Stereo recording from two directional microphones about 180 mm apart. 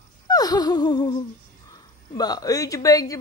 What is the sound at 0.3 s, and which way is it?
Gasp, 20° left (ahead or behind).